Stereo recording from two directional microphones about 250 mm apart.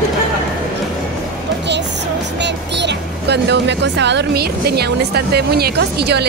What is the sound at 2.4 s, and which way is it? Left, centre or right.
Speech, right.